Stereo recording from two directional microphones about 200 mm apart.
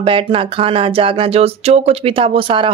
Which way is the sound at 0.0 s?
25° right (ahead or behind).